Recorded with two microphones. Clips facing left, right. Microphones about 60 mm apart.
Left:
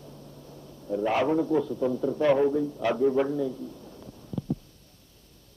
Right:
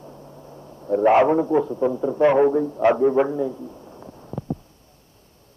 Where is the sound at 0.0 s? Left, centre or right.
Right.